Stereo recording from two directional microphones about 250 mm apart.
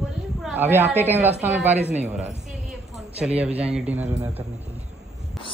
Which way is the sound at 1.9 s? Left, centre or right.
Right.